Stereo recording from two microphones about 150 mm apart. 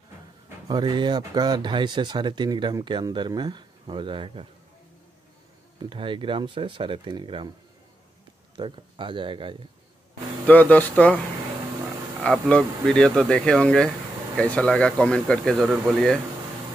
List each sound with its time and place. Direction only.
0.7 s speech: 30° right (ahead or behind)
5.9 s speech: 35° right (ahead or behind)
8.5 s speech: 35° right (ahead or behind)
10.4 s speech: 10° left (ahead or behind)
12.2 s speech: 5° left (ahead or behind)